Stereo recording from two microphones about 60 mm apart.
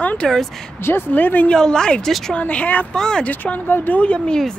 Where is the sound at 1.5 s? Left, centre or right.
Centre.